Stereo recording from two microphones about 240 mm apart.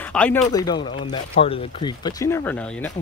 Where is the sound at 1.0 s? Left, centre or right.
Left; by 2.9 s centre.